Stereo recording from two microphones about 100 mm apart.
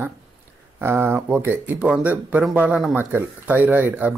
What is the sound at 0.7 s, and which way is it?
Speech, 25° right (ahead or behind).